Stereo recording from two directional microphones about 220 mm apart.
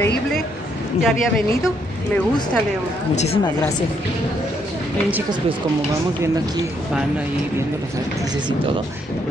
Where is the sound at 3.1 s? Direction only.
30° left (ahead or behind).